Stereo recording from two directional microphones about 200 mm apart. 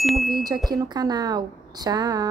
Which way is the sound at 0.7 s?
20° right (ahead or behind).